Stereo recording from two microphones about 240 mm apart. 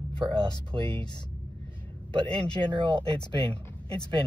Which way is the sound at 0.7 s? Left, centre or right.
Right.